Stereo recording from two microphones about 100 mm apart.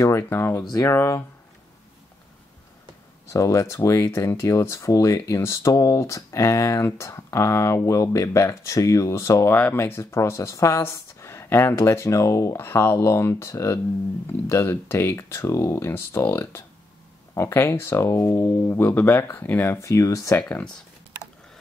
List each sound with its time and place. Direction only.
0.2 s speech: 25° left (ahead or behind)
3.3 s speech: 30° left (ahead or behind)
20.3 s speech: 15° left (ahead or behind)